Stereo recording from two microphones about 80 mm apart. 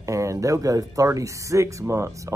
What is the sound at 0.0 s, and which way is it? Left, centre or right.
Speech, right.